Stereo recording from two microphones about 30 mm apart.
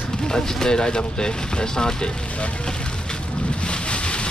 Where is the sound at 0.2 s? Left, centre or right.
Left.